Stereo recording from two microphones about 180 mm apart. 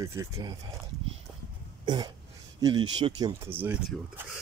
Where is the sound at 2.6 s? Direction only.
25° right (ahead or behind).